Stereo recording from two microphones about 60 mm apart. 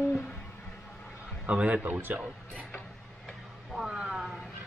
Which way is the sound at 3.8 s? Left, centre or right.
Centre.